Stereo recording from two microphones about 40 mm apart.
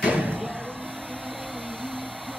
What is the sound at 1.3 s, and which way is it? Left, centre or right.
Vacuum cleaner, centre.